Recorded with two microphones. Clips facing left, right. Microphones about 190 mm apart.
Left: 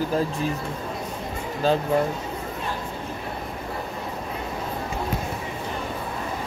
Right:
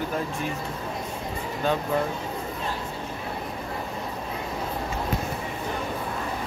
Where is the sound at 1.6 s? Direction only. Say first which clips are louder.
Left 4 dB; 35° left (ahead or behind).